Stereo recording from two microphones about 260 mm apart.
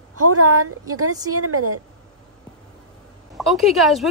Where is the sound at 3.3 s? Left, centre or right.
Centre.